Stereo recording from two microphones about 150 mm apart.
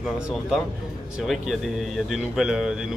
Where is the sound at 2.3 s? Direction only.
5° right (ahead or behind).